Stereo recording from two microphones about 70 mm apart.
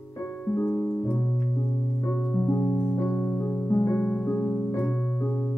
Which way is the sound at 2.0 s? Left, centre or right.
Left.